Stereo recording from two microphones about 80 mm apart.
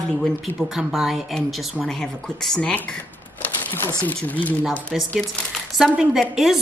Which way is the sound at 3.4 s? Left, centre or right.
Left.